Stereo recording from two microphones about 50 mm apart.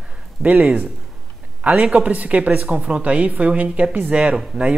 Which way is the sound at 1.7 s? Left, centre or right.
Right.